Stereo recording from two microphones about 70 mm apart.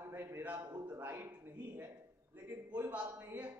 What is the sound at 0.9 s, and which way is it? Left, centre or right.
Speech, right.